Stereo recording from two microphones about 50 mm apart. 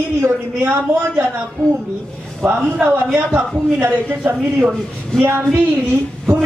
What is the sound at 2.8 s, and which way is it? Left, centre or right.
Speech, right.